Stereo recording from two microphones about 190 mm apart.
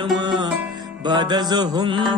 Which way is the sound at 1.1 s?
25° right (ahead or behind).